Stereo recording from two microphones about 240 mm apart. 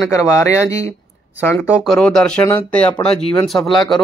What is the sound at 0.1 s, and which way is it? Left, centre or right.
Speech, centre.